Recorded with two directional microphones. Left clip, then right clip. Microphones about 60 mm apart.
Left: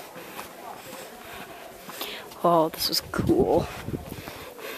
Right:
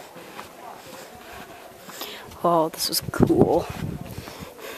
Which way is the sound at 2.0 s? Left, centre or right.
Centre.